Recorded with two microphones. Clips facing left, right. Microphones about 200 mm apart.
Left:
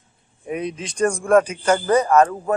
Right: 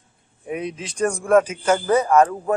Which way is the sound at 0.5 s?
5° right (ahead or behind).